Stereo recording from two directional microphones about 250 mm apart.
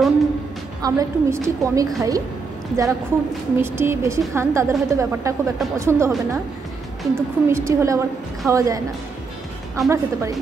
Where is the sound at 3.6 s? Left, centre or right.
Centre.